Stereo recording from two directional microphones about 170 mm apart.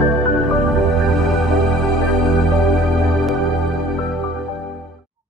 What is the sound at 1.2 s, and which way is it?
Music, centre (ahead or behind).